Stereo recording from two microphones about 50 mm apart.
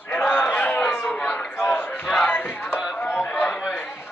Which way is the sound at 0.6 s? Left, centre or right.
Left.